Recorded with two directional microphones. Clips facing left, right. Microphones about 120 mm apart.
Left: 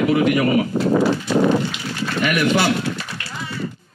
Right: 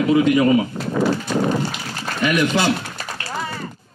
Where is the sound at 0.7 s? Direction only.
35° left (ahead or behind).